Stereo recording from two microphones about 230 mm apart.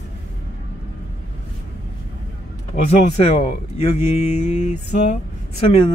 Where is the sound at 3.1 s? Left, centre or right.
Left.